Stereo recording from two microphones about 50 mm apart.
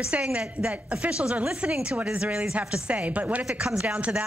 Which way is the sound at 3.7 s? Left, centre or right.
Right.